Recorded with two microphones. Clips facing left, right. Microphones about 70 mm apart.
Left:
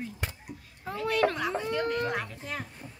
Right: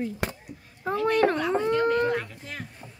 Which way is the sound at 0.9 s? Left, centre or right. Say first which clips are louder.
Right 5 dB; right.